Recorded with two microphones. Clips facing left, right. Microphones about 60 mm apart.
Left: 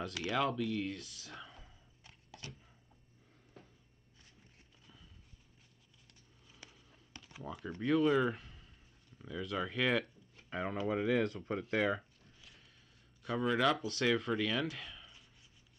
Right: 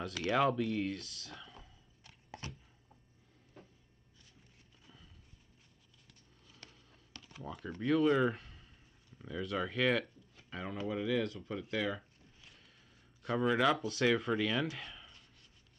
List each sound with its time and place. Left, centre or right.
0.0 s speech: centre
2.4 s a sound: right
6.4 s a sound: centre
7.2 s speech: centre
10.5 s speech: left
13.2 s speech: centre